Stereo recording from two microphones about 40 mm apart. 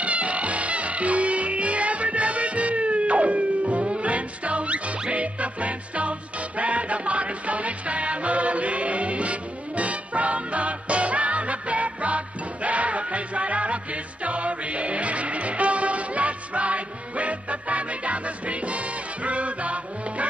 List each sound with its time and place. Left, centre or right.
0.0 s music: right